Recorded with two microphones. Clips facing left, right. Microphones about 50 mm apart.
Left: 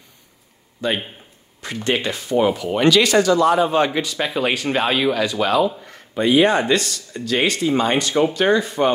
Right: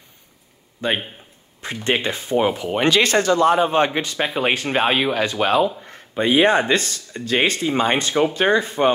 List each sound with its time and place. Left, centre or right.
0.7 s a man's voice: right